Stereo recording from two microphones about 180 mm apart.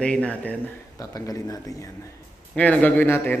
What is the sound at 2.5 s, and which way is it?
Speech, 10° left (ahead or behind).